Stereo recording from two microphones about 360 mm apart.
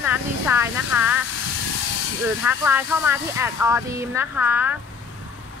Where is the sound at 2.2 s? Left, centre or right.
Centre.